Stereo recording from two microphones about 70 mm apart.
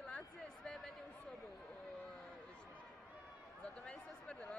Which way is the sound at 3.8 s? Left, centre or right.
Centre.